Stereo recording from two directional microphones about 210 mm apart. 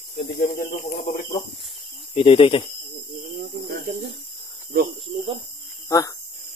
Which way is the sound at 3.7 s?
45° right (ahead or behind).